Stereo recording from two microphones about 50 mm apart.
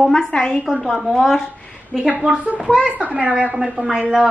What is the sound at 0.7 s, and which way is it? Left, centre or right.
Speech, centre.